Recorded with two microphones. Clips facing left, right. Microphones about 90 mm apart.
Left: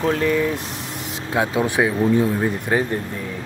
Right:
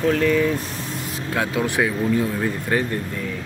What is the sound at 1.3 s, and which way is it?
Speech, 20° left (ahead or behind).